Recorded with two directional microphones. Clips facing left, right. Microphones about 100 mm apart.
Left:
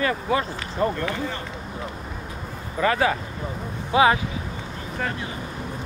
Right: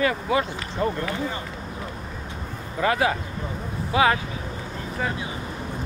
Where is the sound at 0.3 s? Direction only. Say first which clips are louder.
Even; 35° left (ahead or behind).